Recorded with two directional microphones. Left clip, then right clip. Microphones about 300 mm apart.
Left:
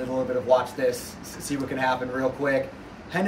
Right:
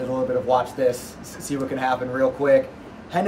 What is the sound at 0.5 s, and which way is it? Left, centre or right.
A man's voice, centre.